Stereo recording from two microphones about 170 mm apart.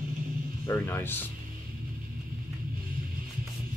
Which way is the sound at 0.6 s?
15° left (ahead or behind).